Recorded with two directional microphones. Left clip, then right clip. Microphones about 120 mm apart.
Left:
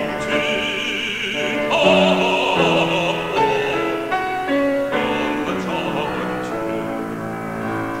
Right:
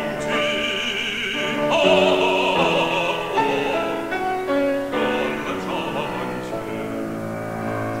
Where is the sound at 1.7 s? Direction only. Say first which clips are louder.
Left 2 dB; 20° left (ahead or behind).